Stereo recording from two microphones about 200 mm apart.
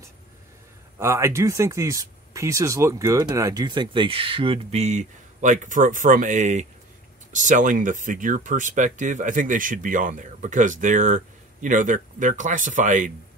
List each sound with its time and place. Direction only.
0.9 s speech: 15° right (ahead or behind); by 13.1 s 40° right (ahead or behind)